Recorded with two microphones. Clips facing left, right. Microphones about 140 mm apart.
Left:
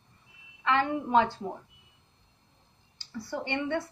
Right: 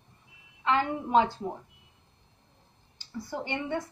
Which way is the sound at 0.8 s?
15° right (ahead or behind).